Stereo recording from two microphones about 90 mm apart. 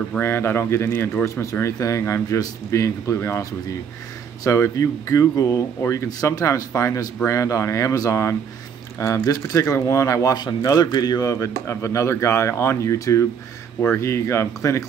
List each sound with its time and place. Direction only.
0.2 s speech: 25° left (ahead or behind)
1.3 s a man's voice: 35° left (ahead or behind)
4.5 s a man's voice: 35° left (ahead or behind)
10.3 s a man's voice: 50° left (ahead or behind); by 14.9 s 35° left (ahead or behind)